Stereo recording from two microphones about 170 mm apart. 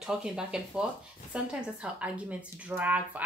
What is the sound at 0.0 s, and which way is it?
Speech, 5° right (ahead or behind).